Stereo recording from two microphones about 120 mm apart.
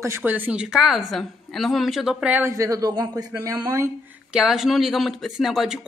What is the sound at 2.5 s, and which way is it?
A woman's voice, 30° right (ahead or behind).